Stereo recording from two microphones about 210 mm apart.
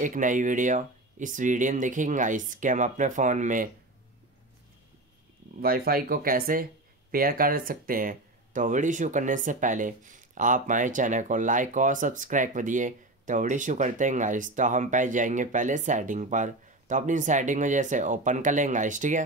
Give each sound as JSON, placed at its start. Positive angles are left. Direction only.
{"t": 0.0, "sound": "speech", "side_deg": -40}
{"t": 5.6, "sound": "speech", "side_deg": -45}